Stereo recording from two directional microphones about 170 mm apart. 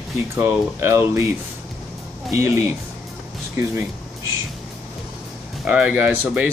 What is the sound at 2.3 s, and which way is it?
Speech, 15° right (ahead or behind).